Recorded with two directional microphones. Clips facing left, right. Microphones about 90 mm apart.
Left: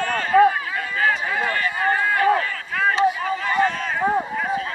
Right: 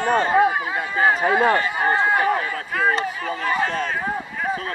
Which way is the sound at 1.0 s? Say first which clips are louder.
Right 5 dB; 25° right (ahead or behind).